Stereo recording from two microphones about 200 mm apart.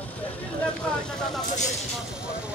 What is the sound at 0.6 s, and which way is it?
Vehicle, 5° left (ahead or behind).